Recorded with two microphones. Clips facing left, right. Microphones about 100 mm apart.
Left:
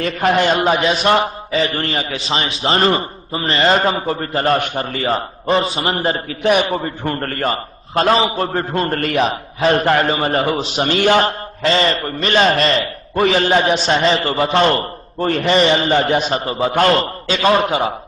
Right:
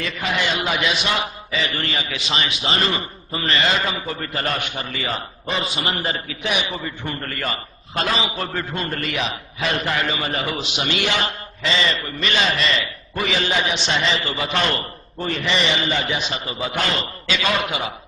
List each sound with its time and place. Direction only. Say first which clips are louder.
0.0 s a man's voice: left 8 dB; 45° left (ahead or behind)
15.1 s a man's voice: left 8 dB; 50° left (ahead or behind)